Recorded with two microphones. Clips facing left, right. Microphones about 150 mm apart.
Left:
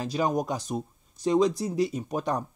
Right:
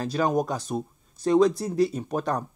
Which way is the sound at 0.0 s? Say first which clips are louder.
Right 2 dB; 15° left (ahead or behind).